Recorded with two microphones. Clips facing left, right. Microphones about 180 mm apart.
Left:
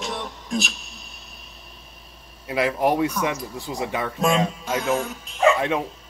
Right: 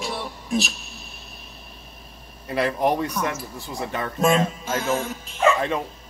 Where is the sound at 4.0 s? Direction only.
Centre (ahead or behind).